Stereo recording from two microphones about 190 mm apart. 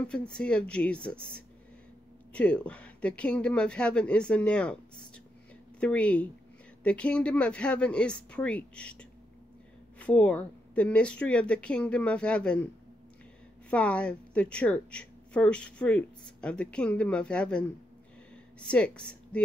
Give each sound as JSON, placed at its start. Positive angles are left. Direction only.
{"t": 0.0, "sound": "a woman's voice", "side_deg": 5}
{"t": 9.9, "sound": "speech", "side_deg": 5}
{"t": 13.7, "sound": "a woman's voice", "side_deg": 5}
{"t": 18.3, "sound": "a sound", "side_deg": 5}